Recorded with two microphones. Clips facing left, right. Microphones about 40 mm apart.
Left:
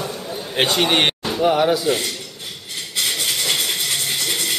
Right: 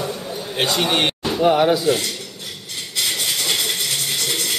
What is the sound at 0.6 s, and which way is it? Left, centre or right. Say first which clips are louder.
Speech: left 2 dB; left.